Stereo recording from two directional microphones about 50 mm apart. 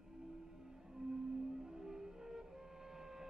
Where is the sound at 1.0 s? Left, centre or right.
Centre.